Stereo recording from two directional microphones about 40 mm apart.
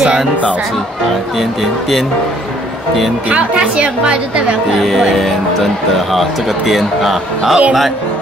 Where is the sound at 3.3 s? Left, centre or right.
Right.